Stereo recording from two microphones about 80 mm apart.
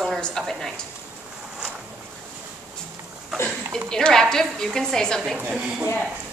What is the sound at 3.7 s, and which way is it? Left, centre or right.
A woman's voice, centre.